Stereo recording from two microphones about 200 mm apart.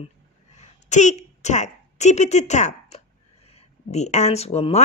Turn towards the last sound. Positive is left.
turn(degrees=30)  # may be behind; listen again after turning